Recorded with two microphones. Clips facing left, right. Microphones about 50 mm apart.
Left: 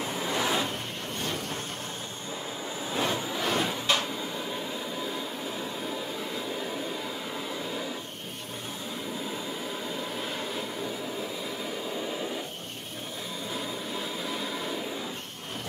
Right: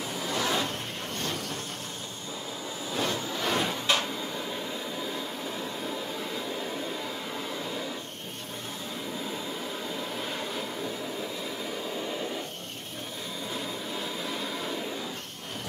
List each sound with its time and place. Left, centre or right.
0.0 s a sound: left
2.9 s music: centre
3.4 s cupboard open or close: centre
7.3 s hair dryer: centre
9.9 s vehicle: centre
13.5 s vehicle: centre